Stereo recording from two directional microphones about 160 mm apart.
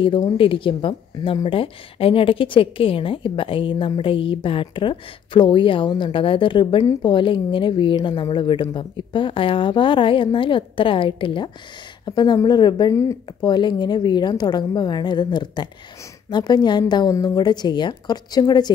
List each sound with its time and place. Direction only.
0.0 s a woman's voice: 30° left (ahead or behind)